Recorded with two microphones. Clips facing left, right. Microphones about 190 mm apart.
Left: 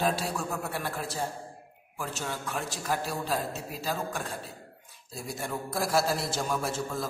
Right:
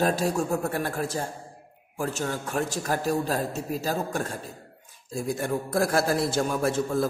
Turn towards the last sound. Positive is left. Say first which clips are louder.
# right 8 dB
turn(degrees=-55)  # may be behind; listen again after turning